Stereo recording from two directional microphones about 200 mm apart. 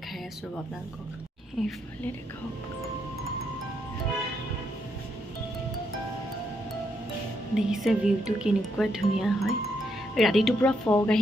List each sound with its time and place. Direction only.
1.6 s speech: centre (ahead or behind)
7.5 s speech: centre (ahead or behind)